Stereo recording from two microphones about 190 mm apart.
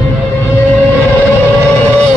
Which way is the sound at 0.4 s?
10° left (ahead or behind).